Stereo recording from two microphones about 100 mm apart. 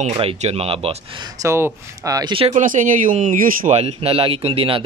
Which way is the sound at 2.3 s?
70° right (ahead or behind).